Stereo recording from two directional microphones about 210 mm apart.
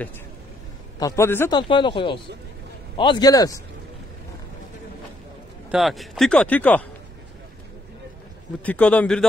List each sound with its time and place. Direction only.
0.9 s speech: 15° left (ahead or behind)
1.6 s speech: 20° left (ahead or behind)
5.7 s speech: centre (ahead or behind)
8.6 s speech: 5° left (ahead or behind)